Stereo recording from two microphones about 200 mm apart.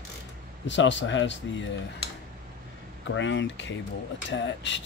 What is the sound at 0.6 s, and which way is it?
Speech, 65° left (ahead or behind).